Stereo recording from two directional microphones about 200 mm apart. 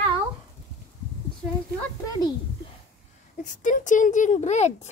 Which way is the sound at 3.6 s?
40° left (ahead or behind).